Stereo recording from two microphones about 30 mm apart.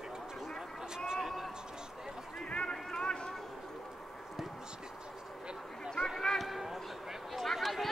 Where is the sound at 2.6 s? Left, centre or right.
Left.